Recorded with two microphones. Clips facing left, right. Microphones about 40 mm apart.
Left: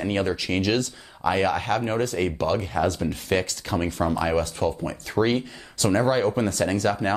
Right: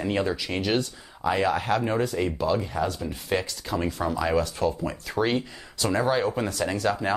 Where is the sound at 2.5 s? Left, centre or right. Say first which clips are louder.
Left 3 dB; left.